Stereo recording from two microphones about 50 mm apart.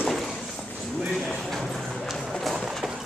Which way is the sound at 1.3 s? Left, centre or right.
Centre.